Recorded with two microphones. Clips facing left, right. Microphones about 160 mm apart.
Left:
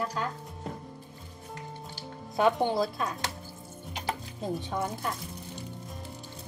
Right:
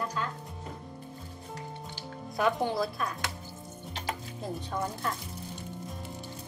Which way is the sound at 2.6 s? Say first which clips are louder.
Left 2 dB; 25° left (ahead or behind).